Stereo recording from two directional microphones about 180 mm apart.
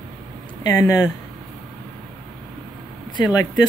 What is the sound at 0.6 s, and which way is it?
Speech, 20° left (ahead or behind).